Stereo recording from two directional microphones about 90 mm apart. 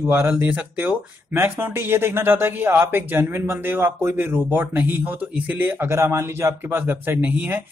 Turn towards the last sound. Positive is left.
turn(degrees=-15)  # may be behind; listen again after turning